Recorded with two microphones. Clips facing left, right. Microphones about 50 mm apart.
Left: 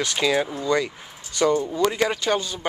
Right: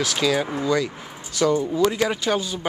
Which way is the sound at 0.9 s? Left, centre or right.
Right.